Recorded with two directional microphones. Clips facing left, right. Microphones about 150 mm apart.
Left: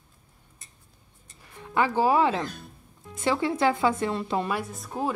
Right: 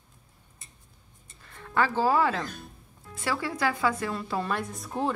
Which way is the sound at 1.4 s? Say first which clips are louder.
Left 1 dB; 15° left (ahead or behind).